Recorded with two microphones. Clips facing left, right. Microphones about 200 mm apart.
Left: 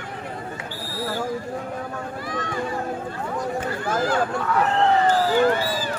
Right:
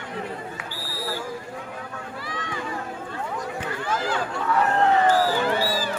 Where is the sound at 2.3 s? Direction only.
45° left (ahead or behind).